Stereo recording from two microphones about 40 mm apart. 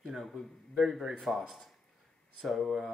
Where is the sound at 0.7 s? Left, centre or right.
Centre.